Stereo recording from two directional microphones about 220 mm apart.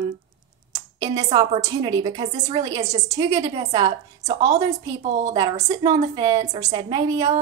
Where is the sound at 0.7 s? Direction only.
15° right (ahead or behind).